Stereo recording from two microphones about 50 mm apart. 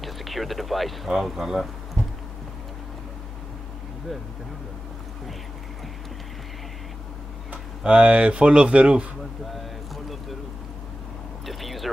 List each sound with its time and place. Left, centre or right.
0.0 s speech: centre
7.8 s speech: right
9.5 s a sound: centre
11.4 s speech: centre